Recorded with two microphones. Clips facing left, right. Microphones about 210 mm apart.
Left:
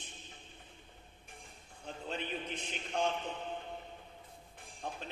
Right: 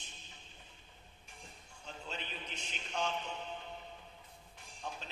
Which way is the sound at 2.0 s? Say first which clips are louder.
Left 7 dB; 55° left (ahead or behind).